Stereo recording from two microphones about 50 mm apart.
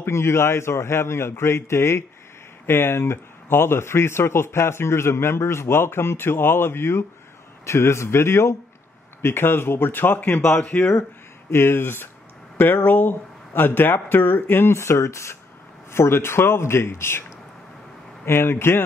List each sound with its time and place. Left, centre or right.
0.0 s speech: left
9.2 s speech: left
10.6 s speech: left
11.5 s speech: left
15.9 s speech: left
18.2 s speech: left